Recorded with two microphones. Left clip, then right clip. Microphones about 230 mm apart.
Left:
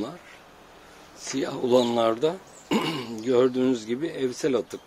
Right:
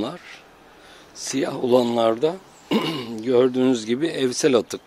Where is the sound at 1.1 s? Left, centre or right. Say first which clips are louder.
Right 4 dB; right.